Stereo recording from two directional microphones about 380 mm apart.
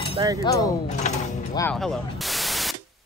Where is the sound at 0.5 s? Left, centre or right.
Centre.